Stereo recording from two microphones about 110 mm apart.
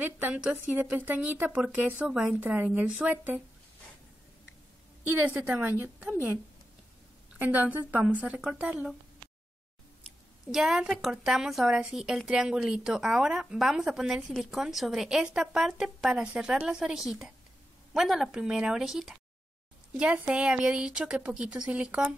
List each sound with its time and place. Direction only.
0.0 s a woman's voice: 10° right (ahead or behind)
5.0 s a woman's voice: 15° right (ahead or behind)
10.0 s a woman's voice: 5° right (ahead or behind)